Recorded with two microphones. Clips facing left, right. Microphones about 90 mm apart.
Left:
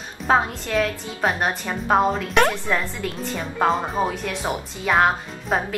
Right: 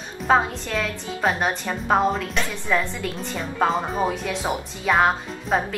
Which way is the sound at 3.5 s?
Centre (ahead or behind).